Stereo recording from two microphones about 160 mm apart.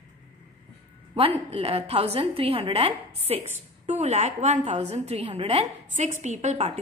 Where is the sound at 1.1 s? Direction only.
35° right (ahead or behind).